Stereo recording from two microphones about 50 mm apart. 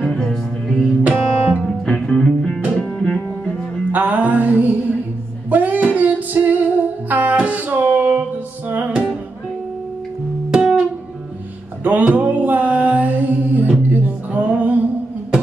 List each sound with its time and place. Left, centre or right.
0.0 s music: centre
2.7 s music: centre
3.9 s music: right
8.9 s music: centre
10.5 s music: centre
11.8 s mantra: right